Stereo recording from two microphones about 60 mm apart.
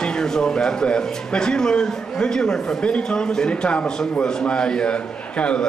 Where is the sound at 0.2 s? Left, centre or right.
Centre.